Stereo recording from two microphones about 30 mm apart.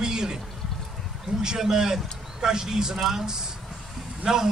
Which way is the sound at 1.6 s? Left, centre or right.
Centre.